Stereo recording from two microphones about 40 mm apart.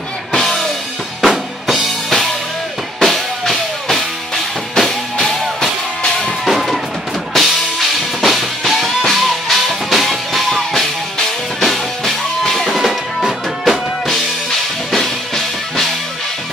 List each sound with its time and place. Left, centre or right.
0.3 s music: centre
1.2 s drum kit: centre
3.0 s music: centre
5.2 s music: centre
6.0 s music: centre
6.4 s music: centre
7.3 s drum kit: centre
8.2 s music: centre
14.9 s music: centre